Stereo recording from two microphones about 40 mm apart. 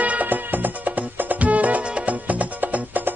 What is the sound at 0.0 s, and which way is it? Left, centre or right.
Music, right.